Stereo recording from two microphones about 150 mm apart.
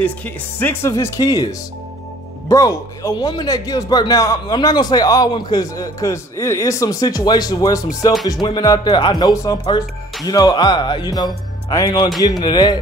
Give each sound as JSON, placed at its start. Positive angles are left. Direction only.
{"t": 0.0, "sound": "a man's voice", "side_deg": 10}